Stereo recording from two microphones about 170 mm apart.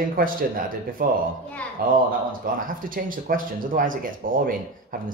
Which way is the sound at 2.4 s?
55° right (ahead or behind).